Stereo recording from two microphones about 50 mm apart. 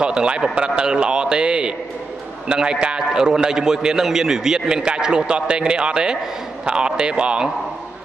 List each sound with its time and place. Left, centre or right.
0.0 s a man's voice: centre